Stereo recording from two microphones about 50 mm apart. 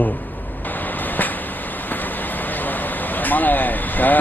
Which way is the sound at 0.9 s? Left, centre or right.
Left.